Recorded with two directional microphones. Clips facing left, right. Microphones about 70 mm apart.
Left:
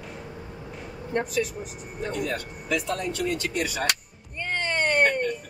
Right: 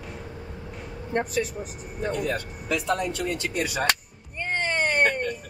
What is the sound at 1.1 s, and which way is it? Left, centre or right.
Speech, right.